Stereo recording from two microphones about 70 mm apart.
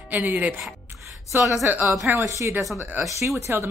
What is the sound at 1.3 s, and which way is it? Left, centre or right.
Speech, right.